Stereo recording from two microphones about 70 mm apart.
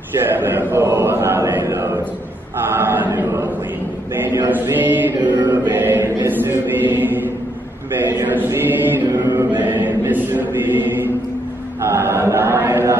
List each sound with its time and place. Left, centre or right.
0.2 s speech: right
1.6 s speech: right
2.7 s chant: right
4.2 s chant: right
9.0 s chant: right